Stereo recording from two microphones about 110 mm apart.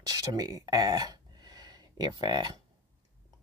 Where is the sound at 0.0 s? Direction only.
35° right (ahead or behind).